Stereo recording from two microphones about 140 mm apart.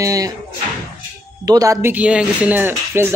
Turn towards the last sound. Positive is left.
turn(degrees=-15)  # may be behind; listen again after turning